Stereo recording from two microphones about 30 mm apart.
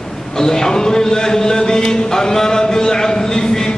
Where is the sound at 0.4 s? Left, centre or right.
Centre.